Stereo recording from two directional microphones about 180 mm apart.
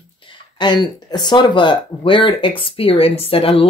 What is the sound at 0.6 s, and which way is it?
Speech, 25° left (ahead or behind).